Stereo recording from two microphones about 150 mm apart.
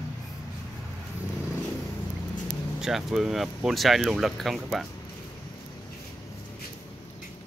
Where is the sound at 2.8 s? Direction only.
Centre (ahead or behind).